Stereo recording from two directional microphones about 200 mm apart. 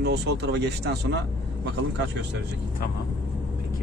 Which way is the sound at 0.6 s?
55° right (ahead or behind).